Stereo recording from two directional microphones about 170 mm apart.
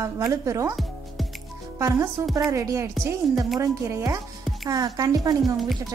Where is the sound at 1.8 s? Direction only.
20° right (ahead or behind).